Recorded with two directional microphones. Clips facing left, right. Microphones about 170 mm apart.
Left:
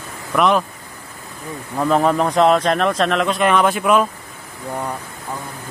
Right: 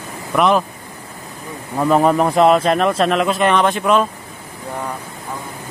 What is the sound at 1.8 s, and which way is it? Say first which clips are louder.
A man's voice: right 2 dB; 5° right (ahead or behind).